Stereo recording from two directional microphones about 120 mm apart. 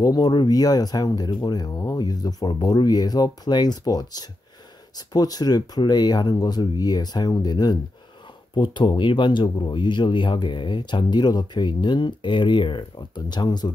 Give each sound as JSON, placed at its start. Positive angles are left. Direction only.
{"t": 0.0, "sound": "speech", "side_deg": 30}